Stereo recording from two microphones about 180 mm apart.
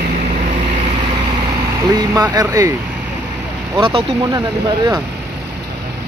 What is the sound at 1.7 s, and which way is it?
Speech, 20° right (ahead or behind).